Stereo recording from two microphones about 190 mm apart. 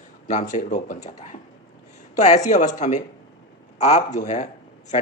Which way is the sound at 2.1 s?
40° left (ahead or behind).